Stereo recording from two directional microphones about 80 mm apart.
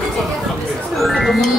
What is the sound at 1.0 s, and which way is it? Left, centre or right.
Speech, centre.